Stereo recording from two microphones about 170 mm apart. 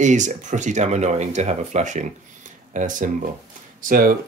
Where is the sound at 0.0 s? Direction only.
45° right (ahead or behind).